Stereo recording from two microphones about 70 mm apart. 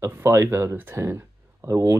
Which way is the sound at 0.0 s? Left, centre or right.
Right.